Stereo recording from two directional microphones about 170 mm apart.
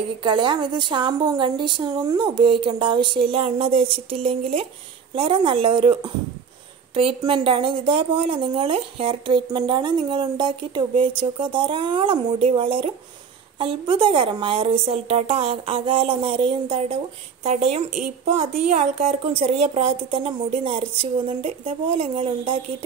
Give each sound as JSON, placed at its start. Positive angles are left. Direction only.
{"t": 0.2, "sound": "speech", "side_deg": -30}